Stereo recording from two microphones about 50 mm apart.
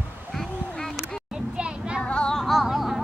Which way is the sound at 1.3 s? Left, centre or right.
Centre.